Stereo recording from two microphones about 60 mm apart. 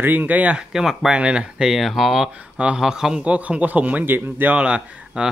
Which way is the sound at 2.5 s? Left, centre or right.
Right.